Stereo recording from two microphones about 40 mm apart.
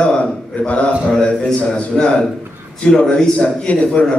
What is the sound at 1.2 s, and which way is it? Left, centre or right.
Speech, left.